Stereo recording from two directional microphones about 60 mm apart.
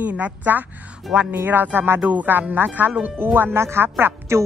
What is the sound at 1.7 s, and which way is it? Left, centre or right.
Speech, right.